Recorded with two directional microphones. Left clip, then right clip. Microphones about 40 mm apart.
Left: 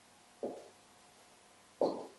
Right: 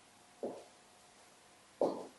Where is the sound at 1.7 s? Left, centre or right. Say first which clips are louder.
Left 1 dB; centre.